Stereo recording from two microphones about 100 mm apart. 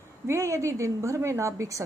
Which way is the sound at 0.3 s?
30° right (ahead or behind).